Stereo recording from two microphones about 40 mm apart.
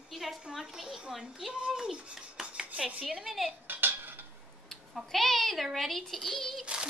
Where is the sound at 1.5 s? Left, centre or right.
Centre.